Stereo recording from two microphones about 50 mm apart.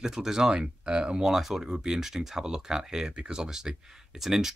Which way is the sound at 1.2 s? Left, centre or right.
Centre.